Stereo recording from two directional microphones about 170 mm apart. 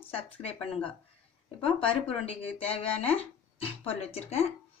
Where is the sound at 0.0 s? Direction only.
35° left (ahead or behind).